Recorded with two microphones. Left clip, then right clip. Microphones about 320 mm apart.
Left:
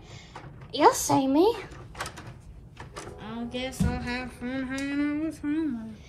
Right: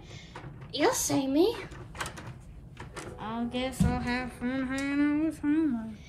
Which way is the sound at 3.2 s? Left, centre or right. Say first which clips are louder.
Right 2 dB; right.